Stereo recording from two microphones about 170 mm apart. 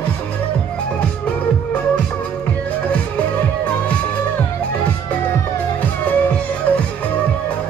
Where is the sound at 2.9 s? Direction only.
5° left (ahead or behind).